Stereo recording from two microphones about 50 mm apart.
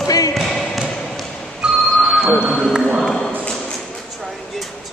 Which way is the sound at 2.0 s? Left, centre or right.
Centre.